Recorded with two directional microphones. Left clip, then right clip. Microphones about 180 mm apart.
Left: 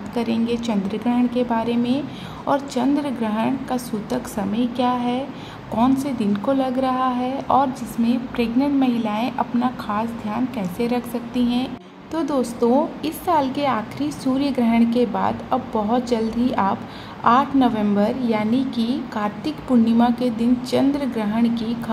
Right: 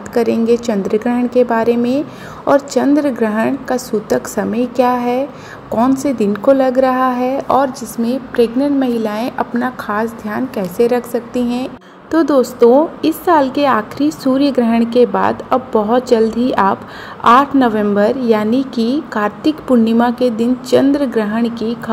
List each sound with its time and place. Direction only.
0.5 s a woman's voice: 35° right (ahead or behind)